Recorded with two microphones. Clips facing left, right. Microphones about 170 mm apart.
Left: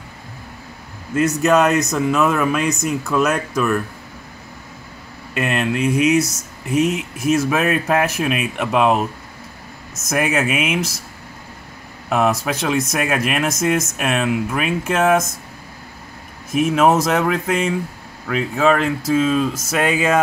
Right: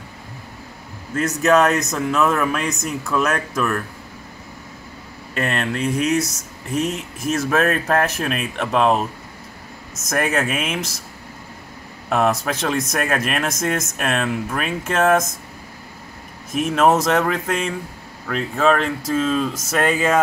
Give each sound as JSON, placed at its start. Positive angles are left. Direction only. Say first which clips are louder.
{"t": 1.1, "sound": "speech", "louder": "left 1 dB", "side_deg": 0}
{"t": 5.3, "sound": "speech", "louder": "left 3 dB", "side_deg": 10}
{"t": 10.0, "sound": "speech", "louder": "left 2 dB", "side_deg": 5}
{"t": 12.1, "sound": "speech", "louder": "left 1 dB", "side_deg": 5}
{"t": 16.5, "sound": "speech", "louder": "left 2 dB", "side_deg": 5}